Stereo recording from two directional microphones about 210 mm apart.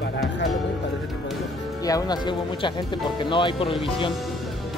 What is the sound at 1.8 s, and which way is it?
Speech, 15° left (ahead or behind).